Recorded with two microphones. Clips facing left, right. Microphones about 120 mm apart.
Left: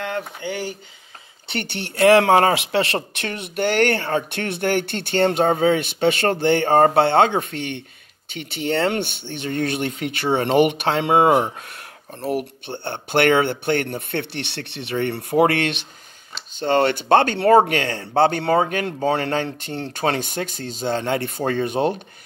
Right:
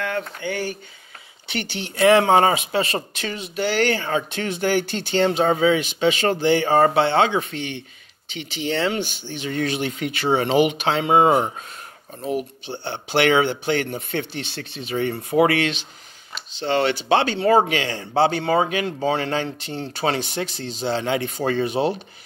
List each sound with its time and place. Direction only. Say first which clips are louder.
0.2 s speech: right 1 dB; 20° left (ahead or behind)
1.5 s speech: left 1 dB; 55° left (ahead or behind)
12.6 s speech: left 1 dB; 55° left (ahead or behind)